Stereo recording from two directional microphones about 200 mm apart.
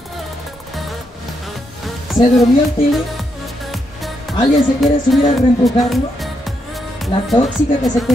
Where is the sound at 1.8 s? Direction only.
Centre (ahead or behind).